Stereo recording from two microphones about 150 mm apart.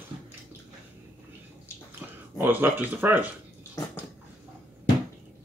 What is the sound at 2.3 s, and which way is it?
Speech, 15° right (ahead or behind).